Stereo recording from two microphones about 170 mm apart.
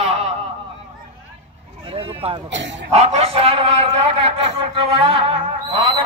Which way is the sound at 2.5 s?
90° right.